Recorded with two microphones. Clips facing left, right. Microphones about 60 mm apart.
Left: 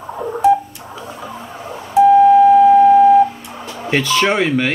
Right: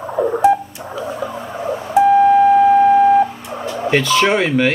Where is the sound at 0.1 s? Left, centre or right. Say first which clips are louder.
Right 4 dB; centre.